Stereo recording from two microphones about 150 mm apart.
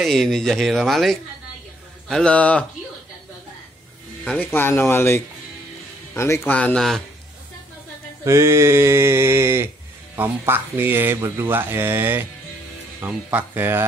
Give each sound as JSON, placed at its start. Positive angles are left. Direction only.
{"t": 0.0, "sound": "speech", "side_deg": 0}
{"t": 4.2, "sound": "speech", "side_deg": 5}
{"t": 8.2, "sound": "speech", "side_deg": -20}